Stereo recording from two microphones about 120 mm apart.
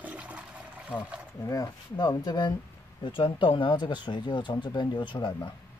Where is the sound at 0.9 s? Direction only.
10° right (ahead or behind).